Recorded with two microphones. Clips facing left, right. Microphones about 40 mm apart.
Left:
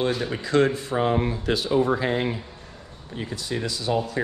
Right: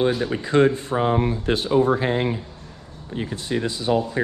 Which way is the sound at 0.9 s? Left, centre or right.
Right.